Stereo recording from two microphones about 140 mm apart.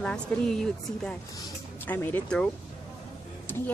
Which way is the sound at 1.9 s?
10° left (ahead or behind).